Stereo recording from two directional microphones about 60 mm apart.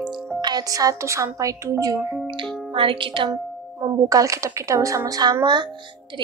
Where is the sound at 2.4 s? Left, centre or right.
Centre.